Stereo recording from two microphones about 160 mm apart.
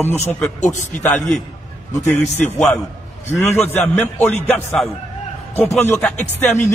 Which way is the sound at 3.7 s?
10° left (ahead or behind).